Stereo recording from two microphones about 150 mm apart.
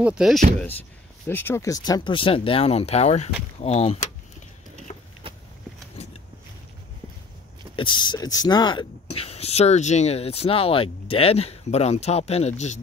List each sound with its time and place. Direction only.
0.0 s speech: 5° right (ahead or behind)
1.2 s speech: 15° left (ahead or behind); by 4.0 s 45° left (ahead or behind)
6.0 s a sound: 45° left (ahead or behind)
7.7 s speech: 30° left (ahead or behind); by 12.8 s 50° left (ahead or behind)